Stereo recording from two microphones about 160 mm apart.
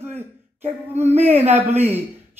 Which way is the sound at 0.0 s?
40° right (ahead or behind).